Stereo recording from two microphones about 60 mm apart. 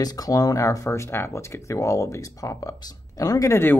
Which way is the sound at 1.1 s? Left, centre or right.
Left.